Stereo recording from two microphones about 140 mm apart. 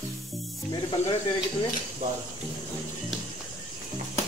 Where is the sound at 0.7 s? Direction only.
30° left (ahead or behind).